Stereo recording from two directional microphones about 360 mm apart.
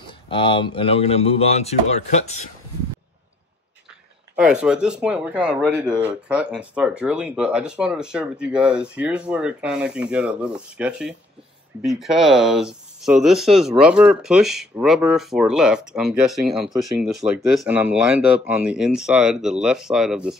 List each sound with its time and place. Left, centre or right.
0.0 s speech: centre
4.4 s speech: centre